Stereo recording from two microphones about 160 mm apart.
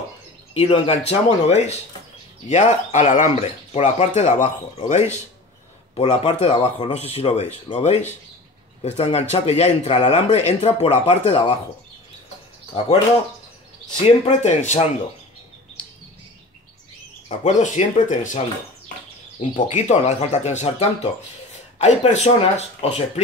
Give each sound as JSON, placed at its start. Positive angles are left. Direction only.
{"t": 0.6, "sound": "speech", "side_deg": 35}
{"t": 5.9, "sound": "speech", "side_deg": 35}
{"t": 14.0, "sound": "speech", "side_deg": 45}
{"t": 17.3, "sound": "speech", "side_deg": 50}
{"t": 19.5, "sound": "speech", "side_deg": 50}